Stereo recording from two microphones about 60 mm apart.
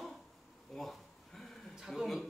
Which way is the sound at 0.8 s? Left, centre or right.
Centre.